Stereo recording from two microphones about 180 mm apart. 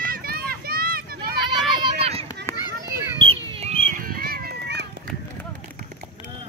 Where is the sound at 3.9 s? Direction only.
55° right (ahead or behind).